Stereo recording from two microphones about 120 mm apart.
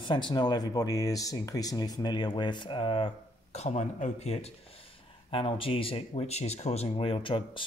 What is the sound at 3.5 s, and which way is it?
Speech, 70° left (ahead or behind).